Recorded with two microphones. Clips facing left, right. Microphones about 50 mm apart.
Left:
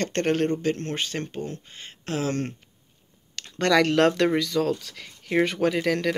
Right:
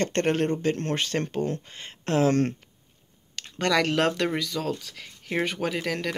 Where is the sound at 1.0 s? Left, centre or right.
Right.